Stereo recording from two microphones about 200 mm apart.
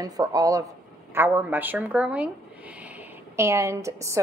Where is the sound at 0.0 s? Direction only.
20° right (ahead or behind).